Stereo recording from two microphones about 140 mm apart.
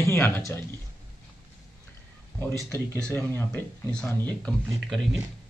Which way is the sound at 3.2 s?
15° left (ahead or behind).